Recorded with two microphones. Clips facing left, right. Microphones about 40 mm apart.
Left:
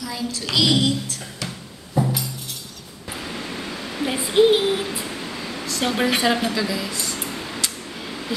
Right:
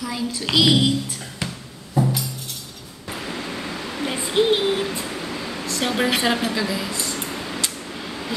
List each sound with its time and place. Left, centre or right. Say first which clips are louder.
0.0 s a child's voice: right 2 dB; centre
2.0 s music: right 1 dB; centre
3.1 s a sound: right 1 dB; centre
5.8 s a child's voice: even; centre
6.9 s a woman's voice: right 1 dB; right
7.2 s a sound: right 1 dB; centre